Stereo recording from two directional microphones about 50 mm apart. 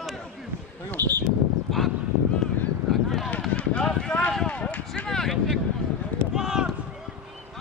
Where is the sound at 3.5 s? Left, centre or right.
Left.